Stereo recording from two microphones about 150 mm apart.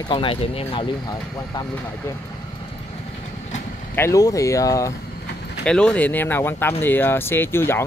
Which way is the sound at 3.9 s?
20° left (ahead or behind).